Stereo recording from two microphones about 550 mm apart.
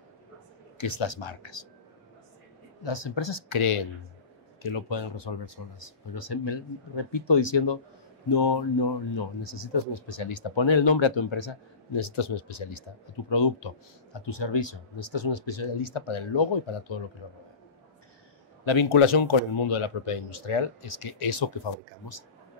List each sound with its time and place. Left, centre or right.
0.7 s speech: left
2.8 s speech: left
18.7 s speech: left